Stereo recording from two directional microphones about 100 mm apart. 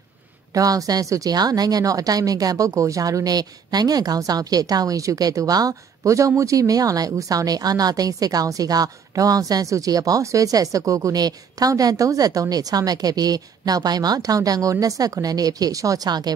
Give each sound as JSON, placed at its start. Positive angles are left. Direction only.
{"t": 0.5, "sound": "a woman's voice", "side_deg": -35}